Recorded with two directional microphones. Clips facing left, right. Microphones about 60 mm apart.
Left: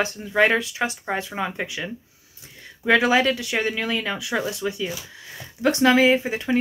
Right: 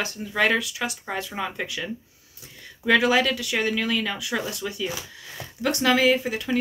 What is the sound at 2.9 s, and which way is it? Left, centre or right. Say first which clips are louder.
Speech: left 2 dB; centre.